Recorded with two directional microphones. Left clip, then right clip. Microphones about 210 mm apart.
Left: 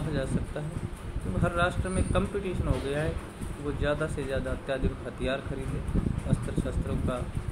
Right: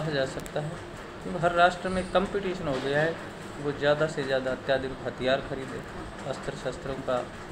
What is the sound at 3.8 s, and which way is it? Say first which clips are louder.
Speech: right 5 dB; 15° left (ahead or behind).